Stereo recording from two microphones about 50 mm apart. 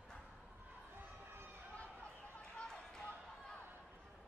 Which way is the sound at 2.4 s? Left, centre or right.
Centre.